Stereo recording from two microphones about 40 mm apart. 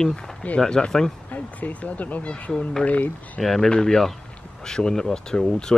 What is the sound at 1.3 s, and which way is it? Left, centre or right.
Speech, left.